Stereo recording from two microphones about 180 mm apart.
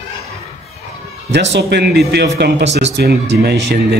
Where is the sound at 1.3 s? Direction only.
75° right (ahead or behind).